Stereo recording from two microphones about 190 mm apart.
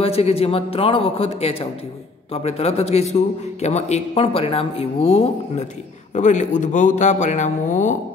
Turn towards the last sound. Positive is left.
turn(degrees=40)  # may be behind; listen again after turning